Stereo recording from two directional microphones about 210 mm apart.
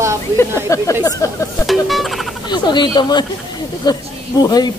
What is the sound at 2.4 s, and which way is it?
Speech, 20° left (ahead or behind).